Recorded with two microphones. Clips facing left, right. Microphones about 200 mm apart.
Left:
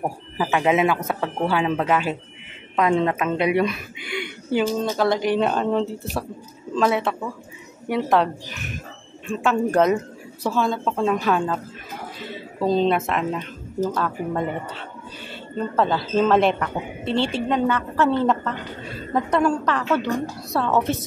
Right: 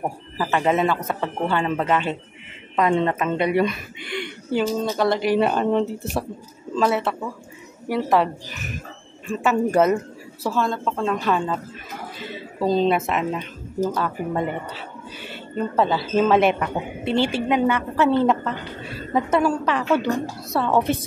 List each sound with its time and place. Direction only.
0.0 s a man's voice: 5° left (ahead or behind); by 20.1 s 10° right (ahead or behind)
20.4 s speech: centre (ahead or behind)
20.7 s speech: 15° right (ahead or behind)